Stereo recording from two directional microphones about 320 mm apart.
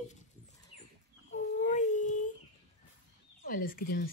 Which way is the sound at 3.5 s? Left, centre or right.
Left.